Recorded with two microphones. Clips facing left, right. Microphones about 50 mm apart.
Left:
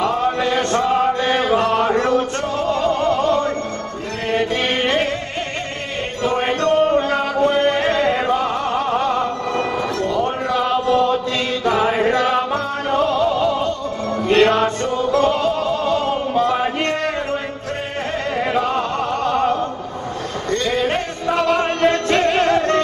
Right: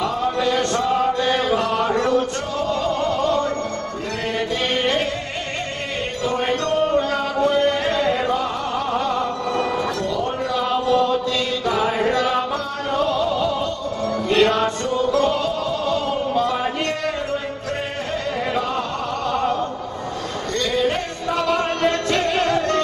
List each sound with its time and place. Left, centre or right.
0.0 s a sound: left
2.7 s music: left
6.2 s music: left
11.6 s chant: left
12.9 s music: left
20.5 s music: left